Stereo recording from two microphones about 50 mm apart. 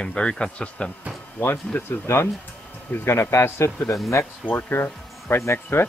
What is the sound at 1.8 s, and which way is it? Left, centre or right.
Speech, left.